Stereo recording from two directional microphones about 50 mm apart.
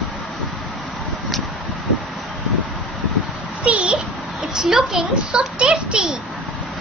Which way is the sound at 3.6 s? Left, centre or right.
Right.